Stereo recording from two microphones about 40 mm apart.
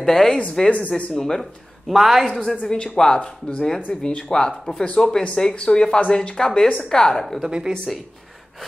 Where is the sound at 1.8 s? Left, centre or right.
Centre.